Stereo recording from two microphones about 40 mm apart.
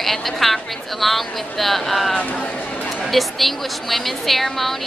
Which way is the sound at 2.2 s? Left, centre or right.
Left.